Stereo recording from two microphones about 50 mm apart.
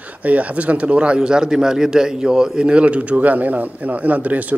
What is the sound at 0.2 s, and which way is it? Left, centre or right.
A man's voice, right.